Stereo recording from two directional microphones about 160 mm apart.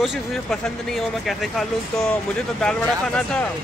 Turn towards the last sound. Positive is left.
turn(degrees=5)  # may be behind; listen again after turning